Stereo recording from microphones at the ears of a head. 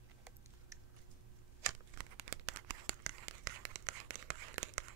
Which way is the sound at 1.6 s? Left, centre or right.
Right.